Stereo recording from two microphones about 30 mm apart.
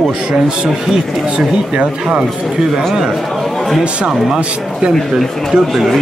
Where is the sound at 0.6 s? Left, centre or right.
Right.